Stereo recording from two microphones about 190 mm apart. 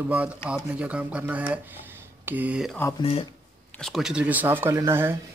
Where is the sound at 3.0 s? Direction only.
30° left (ahead or behind).